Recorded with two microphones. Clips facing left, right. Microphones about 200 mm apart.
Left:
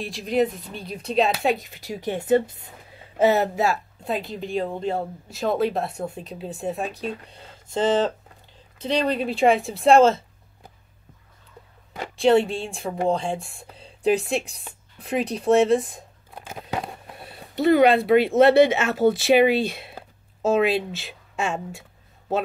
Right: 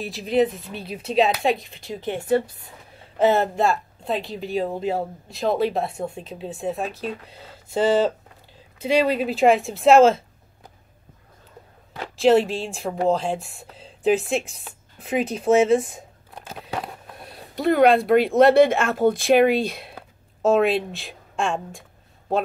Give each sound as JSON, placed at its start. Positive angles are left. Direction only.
{"t": 0.0, "sound": "speech", "side_deg": 0}
{"t": 3.2, "sound": "speech", "side_deg": 10}
{"t": 12.2, "sound": "a woman's voice", "side_deg": 0}